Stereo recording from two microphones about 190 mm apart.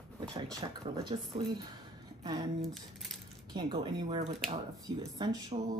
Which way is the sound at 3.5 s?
25° right (ahead or behind).